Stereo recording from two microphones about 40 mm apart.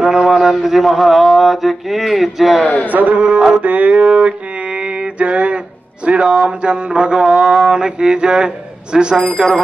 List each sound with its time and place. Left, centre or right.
0.0 s a man's voice: centre
2.6 s a man's voice: left
2.9 s speech: right
3.3 s a man's voice: right
3.6 s speech: right
3.9 s mantra: right
6.0 s a man's voice: right
7.2 s speech: centre
7.7 s a man's voice: right